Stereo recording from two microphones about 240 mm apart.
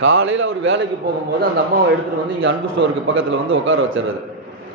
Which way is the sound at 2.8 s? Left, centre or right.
Right.